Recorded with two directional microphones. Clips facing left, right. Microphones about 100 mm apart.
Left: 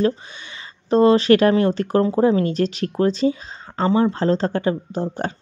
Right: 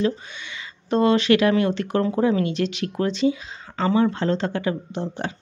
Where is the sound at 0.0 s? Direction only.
35° left (ahead or behind).